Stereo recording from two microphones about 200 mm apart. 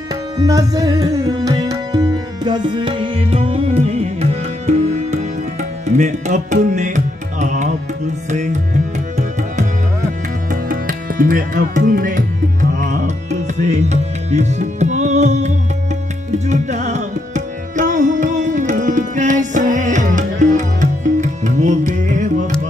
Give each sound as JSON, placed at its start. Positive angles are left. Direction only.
{"t": 0.4, "sound": "tabla", "side_deg": -15}
{"t": 8.3, "sound": "music", "side_deg": -35}
{"t": 10.5, "sound": "music", "side_deg": -45}